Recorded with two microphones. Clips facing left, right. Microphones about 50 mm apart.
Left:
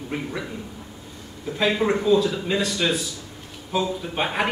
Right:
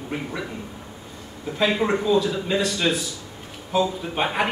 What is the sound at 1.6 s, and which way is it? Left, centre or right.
A man's voice, centre.